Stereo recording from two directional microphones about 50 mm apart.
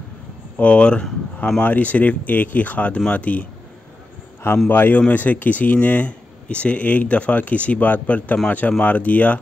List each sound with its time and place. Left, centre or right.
0.6 s speech: left
4.6 s speech: left